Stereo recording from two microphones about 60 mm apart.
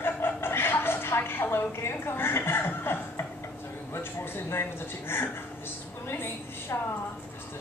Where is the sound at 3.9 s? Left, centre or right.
Left.